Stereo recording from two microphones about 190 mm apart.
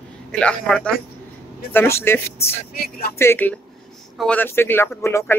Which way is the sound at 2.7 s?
55° left (ahead or behind).